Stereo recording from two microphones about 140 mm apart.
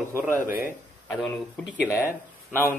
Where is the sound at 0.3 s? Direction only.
20° right (ahead or behind).